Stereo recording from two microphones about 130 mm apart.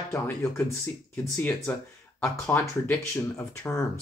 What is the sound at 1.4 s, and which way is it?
Speech, 15° left (ahead or behind).